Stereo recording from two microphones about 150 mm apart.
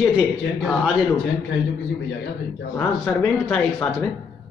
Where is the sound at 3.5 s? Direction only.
5° left (ahead or behind).